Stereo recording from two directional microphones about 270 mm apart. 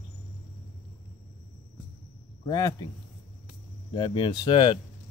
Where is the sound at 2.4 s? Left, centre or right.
Centre.